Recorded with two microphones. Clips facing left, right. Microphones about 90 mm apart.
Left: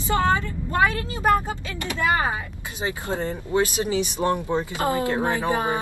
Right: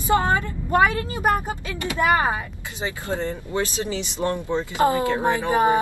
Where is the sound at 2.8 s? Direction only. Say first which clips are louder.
Even; 20° left (ahead or behind).